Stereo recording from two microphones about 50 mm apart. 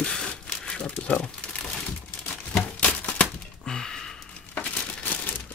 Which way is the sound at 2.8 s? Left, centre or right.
Left.